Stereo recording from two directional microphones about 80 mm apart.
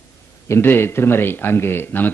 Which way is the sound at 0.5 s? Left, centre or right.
Left.